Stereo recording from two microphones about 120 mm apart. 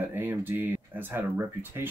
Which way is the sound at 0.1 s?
15° right (ahead or behind).